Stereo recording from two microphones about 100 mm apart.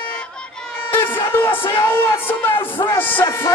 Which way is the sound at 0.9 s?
20° left (ahead or behind).